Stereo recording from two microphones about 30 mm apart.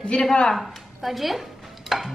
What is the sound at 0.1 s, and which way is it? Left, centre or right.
Speech, left.